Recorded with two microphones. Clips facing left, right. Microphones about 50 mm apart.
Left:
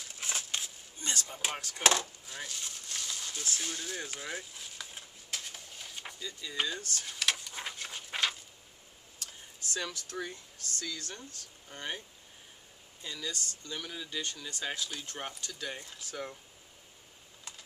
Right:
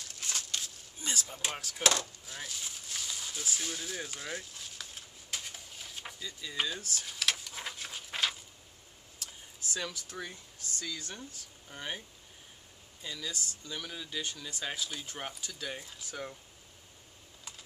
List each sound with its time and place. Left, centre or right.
0.1 s walk: centre
0.9 s a sound: centre
1.8 s speech: centre
2.2 s speech: centre
5.3 s a sound: centre
10.1 s speech: centre
13.0 s speech: centre